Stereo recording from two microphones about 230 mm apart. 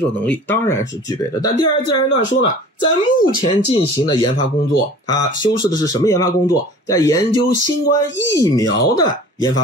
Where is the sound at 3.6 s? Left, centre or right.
Left.